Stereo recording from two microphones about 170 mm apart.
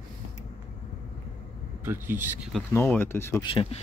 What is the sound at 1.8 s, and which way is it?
Speech, 10° right (ahead or behind).